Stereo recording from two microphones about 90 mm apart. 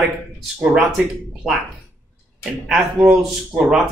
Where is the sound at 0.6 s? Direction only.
5° right (ahead or behind).